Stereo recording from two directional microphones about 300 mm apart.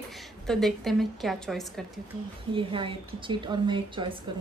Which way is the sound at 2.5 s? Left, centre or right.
Centre.